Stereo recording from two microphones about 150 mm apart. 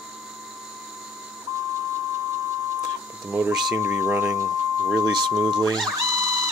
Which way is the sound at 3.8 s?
15° right (ahead or behind).